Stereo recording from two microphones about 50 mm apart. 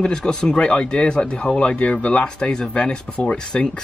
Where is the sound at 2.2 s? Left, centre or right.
Centre.